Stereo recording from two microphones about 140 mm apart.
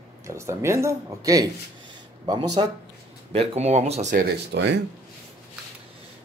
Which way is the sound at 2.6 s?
40° right (ahead or behind).